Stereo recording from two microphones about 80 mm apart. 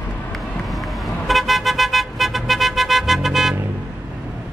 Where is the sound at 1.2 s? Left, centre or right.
Centre.